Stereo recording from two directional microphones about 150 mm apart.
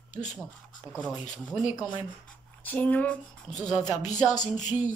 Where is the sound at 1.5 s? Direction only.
5° right (ahead or behind).